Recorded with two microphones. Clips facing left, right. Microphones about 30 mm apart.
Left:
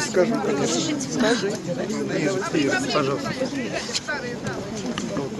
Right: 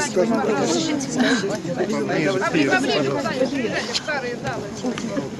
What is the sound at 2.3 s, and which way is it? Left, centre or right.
Speech, right.